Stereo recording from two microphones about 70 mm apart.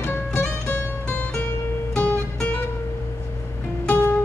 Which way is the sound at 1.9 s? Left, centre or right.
Centre.